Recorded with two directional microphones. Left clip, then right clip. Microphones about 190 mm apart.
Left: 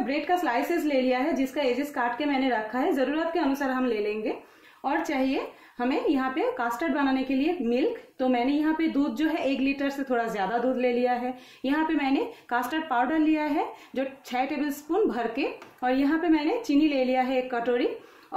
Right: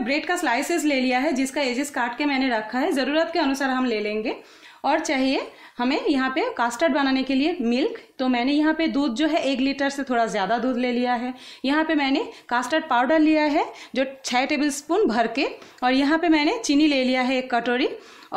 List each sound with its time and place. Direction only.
0.0 s a woman's voice: 45° right (ahead or behind)